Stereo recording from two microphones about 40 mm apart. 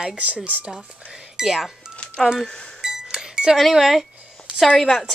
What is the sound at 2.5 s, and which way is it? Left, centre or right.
Speech, centre.